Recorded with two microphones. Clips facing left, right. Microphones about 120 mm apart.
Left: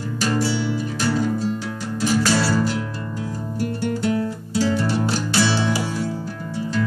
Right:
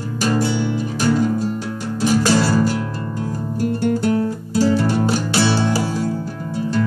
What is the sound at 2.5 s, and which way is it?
Music, 40° right (ahead or behind).